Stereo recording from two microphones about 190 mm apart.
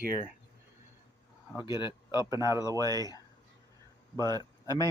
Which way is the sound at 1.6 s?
25° left (ahead or behind).